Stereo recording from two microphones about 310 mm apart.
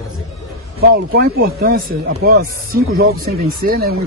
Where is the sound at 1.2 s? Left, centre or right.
Right.